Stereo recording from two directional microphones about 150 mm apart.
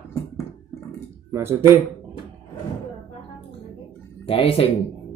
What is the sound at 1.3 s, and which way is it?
Speech, 15° right (ahead or behind).